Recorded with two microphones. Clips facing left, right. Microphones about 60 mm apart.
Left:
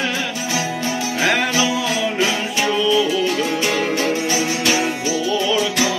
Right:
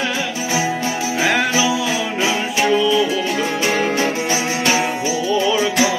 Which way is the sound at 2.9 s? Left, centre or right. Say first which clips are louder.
Even; right.